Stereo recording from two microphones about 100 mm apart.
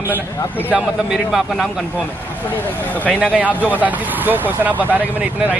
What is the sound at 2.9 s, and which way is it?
Speech, 15° left (ahead or behind).